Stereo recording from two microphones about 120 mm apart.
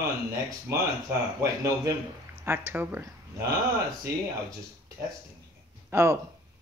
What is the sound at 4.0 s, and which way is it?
Speech, 30° right (ahead or behind).